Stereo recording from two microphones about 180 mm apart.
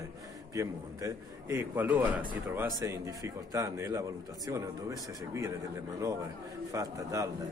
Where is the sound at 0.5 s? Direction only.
15° right (ahead or behind).